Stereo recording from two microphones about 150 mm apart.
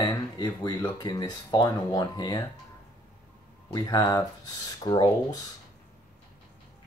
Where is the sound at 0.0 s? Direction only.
30° left (ahead or behind).